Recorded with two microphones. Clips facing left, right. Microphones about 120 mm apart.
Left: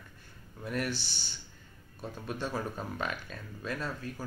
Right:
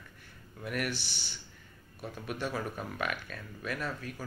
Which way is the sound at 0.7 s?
30° left (ahead or behind).